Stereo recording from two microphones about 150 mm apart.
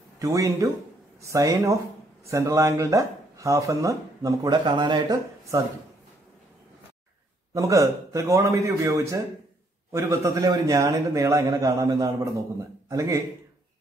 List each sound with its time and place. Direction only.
0.2 s a man's voice: 20° right (ahead or behind)
7.5 s a man's voice: 20° right (ahead or behind)